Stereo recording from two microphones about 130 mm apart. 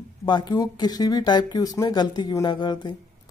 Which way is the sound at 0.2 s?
35° left (ahead or behind).